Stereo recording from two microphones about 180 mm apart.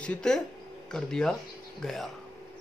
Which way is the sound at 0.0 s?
5° left (ahead or behind).